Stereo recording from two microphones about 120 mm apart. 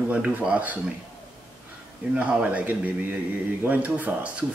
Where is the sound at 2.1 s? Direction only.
10° right (ahead or behind).